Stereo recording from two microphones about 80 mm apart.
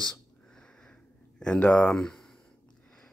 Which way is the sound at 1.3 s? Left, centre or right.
Centre.